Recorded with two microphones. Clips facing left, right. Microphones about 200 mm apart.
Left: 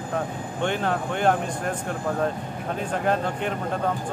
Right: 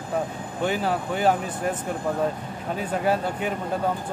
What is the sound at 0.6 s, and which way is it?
Speech, 5° right (ahead or behind).